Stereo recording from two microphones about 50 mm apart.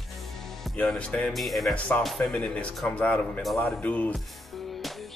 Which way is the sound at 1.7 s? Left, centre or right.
Left.